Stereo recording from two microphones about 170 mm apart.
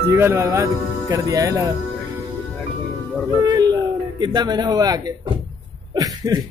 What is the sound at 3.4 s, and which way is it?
Speech, 25° right (ahead or behind).